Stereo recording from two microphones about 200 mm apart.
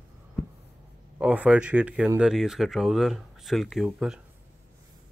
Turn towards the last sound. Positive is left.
turn(degrees=0)  # may be behind; listen again after turning